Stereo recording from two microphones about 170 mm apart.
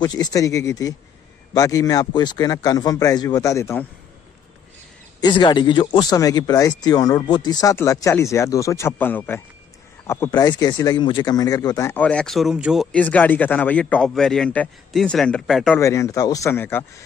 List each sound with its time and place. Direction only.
0.0 s speech: 25° left (ahead or behind)
5.2 s speech: 25° left (ahead or behind); by 12.8 s 5° right (ahead or behind)
12.9 s speech: 10° left (ahead or behind)
15.8 s speech: 15° left (ahead or behind)